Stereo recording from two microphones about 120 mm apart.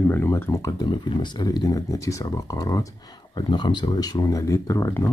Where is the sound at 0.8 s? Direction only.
40° left (ahead or behind).